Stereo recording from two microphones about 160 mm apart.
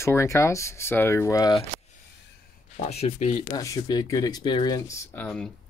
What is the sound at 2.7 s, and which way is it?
Speech, 40° left (ahead or behind).